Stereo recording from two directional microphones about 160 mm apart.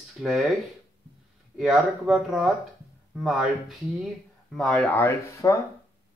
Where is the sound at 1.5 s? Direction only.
5° right (ahead or behind).